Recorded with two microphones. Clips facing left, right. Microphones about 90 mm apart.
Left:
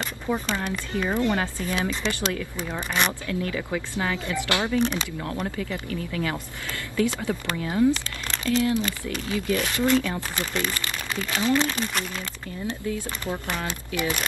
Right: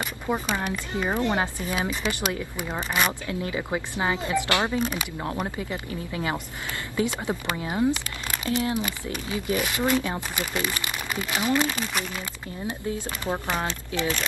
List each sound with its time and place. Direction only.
0.0 s speech: 15° right (ahead or behind)
4.7 s speech: 10° right (ahead or behind)
5.6 s speech: 25° right (ahead or behind)
12.8 s speech: 20° right (ahead or behind)
13.7 s speech: 15° left (ahead or behind)